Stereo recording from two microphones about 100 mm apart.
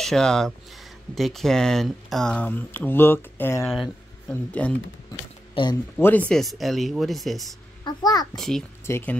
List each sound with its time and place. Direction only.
0.0 s speech: 5° left (ahead or behind)
5.5 s speech: 50° left (ahead or behind)
5.9 s speech: 20° left (ahead or behind)
6.3 s speech: centre (ahead or behind)
7.8 s a child's voice: 40° left (ahead or behind)
8.4 s speech: 5° left (ahead or behind)
8.8 s speech: 25° left (ahead or behind)